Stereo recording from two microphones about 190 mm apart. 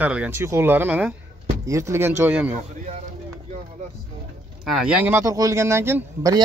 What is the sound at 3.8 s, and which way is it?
Vehicle, 40° right (ahead or behind).